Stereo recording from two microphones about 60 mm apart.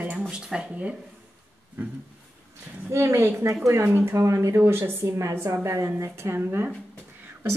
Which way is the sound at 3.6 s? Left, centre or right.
Right.